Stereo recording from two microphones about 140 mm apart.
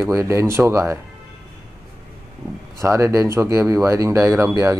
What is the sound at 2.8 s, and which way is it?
Speech, 25° right (ahead or behind).